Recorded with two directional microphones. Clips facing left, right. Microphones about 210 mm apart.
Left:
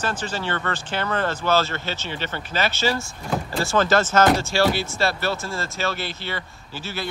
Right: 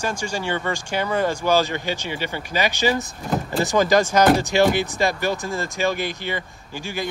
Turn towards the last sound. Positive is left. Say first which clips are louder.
# right 3 dB
turn(degrees=-15)  # may be behind; listen again after turning